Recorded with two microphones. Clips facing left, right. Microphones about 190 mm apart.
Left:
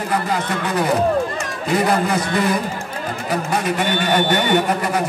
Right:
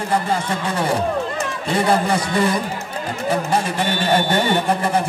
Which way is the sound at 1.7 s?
30° right (ahead or behind).